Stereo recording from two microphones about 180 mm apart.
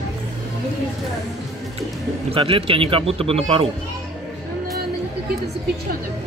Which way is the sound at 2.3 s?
30° right (ahead or behind).